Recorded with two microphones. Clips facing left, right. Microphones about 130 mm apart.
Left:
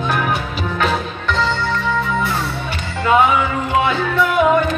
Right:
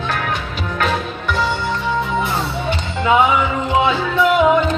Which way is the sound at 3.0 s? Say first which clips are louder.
Even; 20° right (ahead or behind).